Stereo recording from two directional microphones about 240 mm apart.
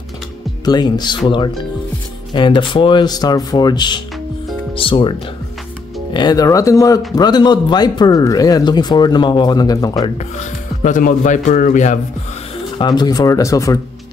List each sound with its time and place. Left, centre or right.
0.7 s speech: centre
6.1 s speech: centre
10.0 s speech: left
12.7 s speech: centre